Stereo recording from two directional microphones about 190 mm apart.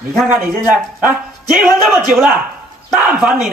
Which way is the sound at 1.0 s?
Centre (ahead or behind).